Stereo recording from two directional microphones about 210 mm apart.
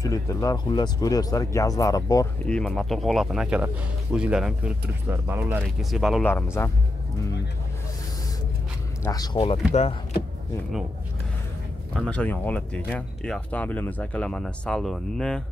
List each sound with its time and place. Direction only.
0.0 s speech: 15° left (ahead or behind)
2.4 s speech: 5° left (ahead or behind)
9.0 s speech: 15° left (ahead or behind)
11.9 s speech: 5° left (ahead or behind)